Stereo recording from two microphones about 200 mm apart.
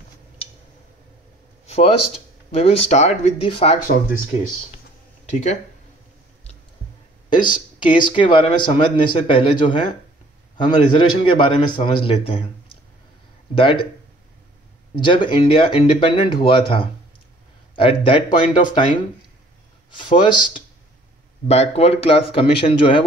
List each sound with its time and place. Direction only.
2.5 s speech: 30° left (ahead or behind)
5.3 s speech: 35° left (ahead or behind)
7.2 s speech: 25° left (ahead or behind)
13.6 s speech: 25° left (ahead or behind)
15.0 s speech: 25° left (ahead or behind)
19.9 s speech: 25° left (ahead or behind)